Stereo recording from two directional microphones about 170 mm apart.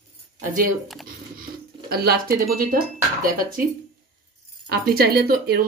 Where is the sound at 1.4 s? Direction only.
65° right (ahead or behind).